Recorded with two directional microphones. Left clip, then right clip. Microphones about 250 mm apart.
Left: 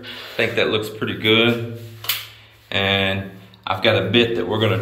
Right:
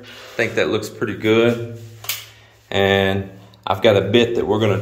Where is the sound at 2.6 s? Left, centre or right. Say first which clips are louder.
Right 3 dB; right.